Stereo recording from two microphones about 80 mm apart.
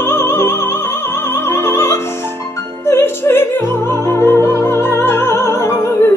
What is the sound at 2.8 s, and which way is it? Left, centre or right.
Music, left.